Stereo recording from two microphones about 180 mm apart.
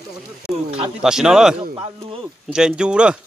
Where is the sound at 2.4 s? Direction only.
5° right (ahead or behind).